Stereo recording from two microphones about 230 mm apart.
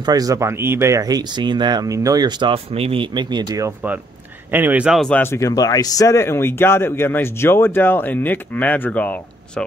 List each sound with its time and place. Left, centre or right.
0.0 s speech: centre